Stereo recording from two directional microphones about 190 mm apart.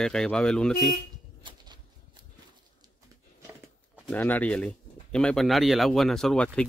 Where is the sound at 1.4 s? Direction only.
25° right (ahead or behind).